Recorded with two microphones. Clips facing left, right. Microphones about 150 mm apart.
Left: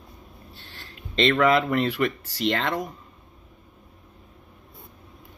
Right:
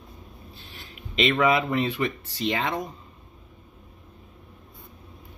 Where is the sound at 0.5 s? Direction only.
85° left.